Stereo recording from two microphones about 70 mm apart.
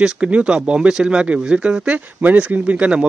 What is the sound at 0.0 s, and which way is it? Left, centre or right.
A man's voice, centre.